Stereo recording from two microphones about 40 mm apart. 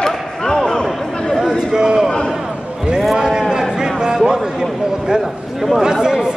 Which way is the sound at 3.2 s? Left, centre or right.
Centre.